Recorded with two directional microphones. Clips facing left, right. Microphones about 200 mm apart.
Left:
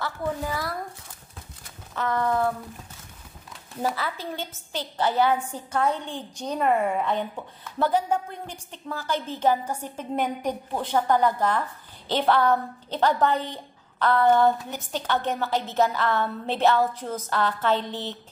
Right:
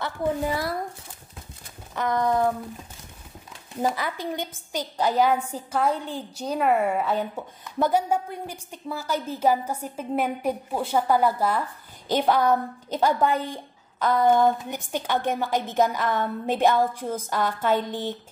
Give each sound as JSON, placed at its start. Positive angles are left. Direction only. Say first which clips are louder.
{"t": 0.0, "sound": "a woman's voice", "louder": "right 3 dB", "side_deg": -25}
{"t": 2.0, "sound": "a woman's voice", "louder": "right 2 dB", "side_deg": -15}
{"t": 3.8, "sound": "a woman's voice", "louder": "right 2 dB", "side_deg": -15}